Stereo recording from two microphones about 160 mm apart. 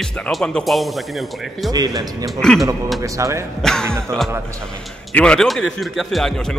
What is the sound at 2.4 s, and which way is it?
Speech, 5° left (ahead or behind).